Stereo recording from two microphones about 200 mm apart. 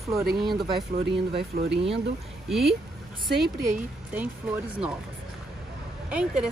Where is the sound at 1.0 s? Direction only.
55° right (ahead or behind).